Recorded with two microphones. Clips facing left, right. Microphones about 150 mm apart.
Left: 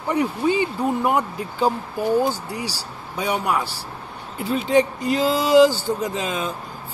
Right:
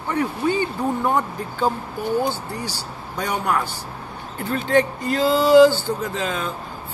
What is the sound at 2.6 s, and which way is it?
Speech, 35° left (ahead or behind).